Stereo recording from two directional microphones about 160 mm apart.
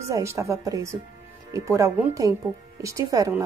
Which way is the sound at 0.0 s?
20° right (ahead or behind).